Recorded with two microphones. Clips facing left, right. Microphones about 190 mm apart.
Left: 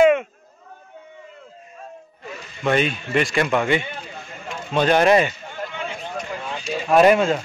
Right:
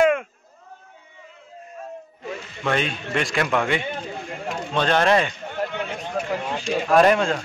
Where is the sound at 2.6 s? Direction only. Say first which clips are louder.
Left 4 dB; 5° left (ahead or behind).